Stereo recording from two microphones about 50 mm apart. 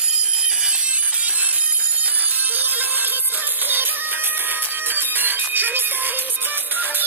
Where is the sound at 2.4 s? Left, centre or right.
Right.